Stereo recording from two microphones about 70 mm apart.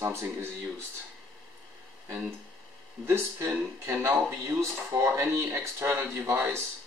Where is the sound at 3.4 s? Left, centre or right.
Right.